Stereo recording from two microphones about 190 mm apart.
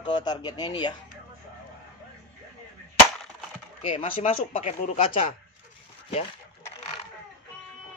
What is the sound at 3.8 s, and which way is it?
Speech, 30° left (ahead or behind).